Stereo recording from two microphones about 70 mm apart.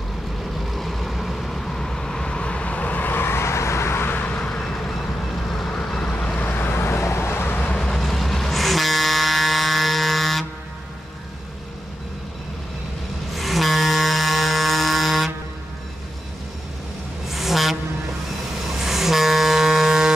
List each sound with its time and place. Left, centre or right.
0.7 s vehicle: centre; by 4.5 s left
4.5 s vehicle: centre; by 7.7 s left
7.7 s vehicle: centre
13.3 s vehicle: centre
17.3 s vehicle: centre